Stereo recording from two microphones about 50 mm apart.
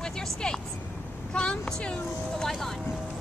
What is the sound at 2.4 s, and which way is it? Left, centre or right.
Speech, centre.